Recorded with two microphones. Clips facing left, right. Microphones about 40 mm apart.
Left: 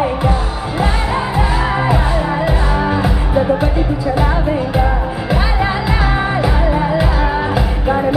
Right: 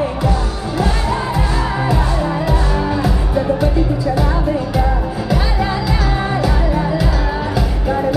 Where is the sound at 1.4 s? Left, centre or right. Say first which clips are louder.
Left 3 dB; left.